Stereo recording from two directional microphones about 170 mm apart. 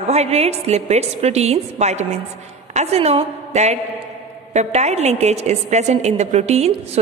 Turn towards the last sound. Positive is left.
turn(degrees=-40)  # may be behind; listen again after turning